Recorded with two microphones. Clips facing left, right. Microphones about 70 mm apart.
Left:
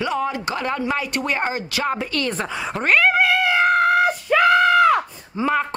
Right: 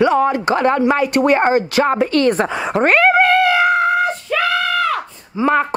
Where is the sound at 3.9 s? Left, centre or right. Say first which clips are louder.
Right 1 dB; centre.